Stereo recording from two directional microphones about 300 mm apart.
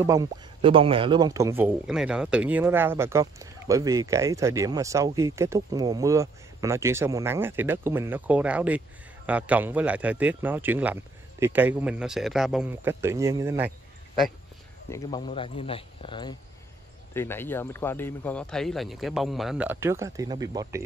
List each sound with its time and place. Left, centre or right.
0.0 s speech: centre
14.9 s a man's voice: centre